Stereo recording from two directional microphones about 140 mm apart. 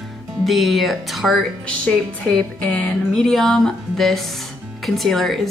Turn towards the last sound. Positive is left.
turn(degrees=0)  # may be behind; listen again after turning